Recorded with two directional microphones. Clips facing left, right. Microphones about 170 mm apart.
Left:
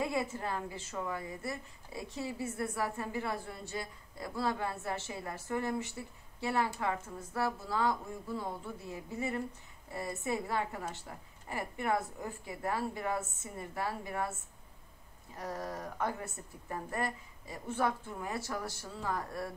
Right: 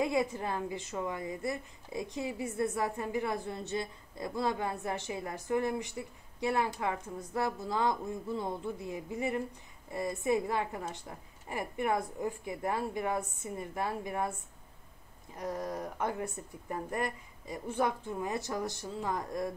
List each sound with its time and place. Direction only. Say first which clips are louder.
0.0 s a woman's voice: right 4 dB; 20° right (ahead or behind)
15.3 s a woman's voice: right 3 dB; 15° right (ahead or behind)